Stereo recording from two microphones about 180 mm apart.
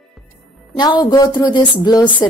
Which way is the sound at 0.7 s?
25° left (ahead or behind).